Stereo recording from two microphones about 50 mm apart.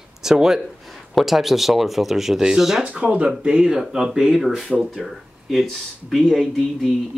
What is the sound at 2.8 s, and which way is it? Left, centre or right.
Speech, right.